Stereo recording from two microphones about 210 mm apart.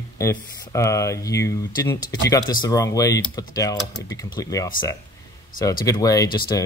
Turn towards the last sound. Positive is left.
turn(degrees=20)  # may be behind; listen again after turning